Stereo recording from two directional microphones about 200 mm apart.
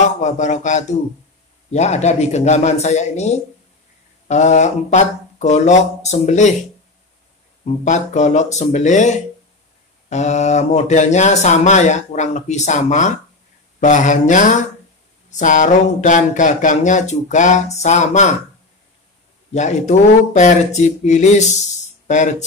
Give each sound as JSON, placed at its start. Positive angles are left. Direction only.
{"t": 0.2, "sound": "speech", "side_deg": 35}
{"t": 7.6, "sound": "speech", "side_deg": 35}
{"t": 19.5, "sound": "speech", "side_deg": 35}
{"t": 22.0, "sound": "a sound", "side_deg": 35}